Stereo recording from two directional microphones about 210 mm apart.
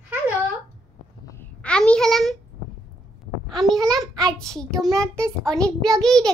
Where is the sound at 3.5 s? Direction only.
Centre (ahead or behind).